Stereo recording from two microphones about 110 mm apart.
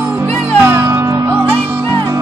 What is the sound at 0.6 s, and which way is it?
Music, 20° right (ahead or behind).